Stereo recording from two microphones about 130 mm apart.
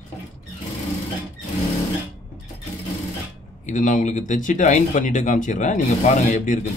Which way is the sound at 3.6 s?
75° left (ahead or behind).